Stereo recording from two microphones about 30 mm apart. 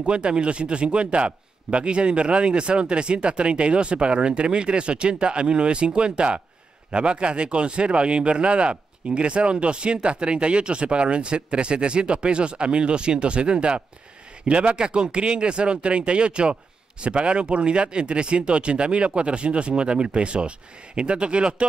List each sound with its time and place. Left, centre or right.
0.0 s speech: right